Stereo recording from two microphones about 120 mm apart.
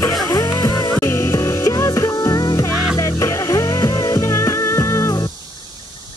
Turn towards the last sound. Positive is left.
turn(degrees=25)  # may be behind; listen again after turning